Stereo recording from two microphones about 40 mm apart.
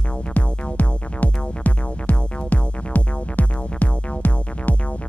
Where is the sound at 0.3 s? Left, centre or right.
Left.